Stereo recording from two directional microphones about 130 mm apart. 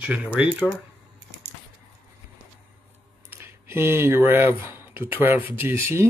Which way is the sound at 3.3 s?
20° right (ahead or behind).